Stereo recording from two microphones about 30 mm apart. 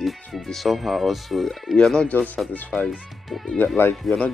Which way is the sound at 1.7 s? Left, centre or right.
Left.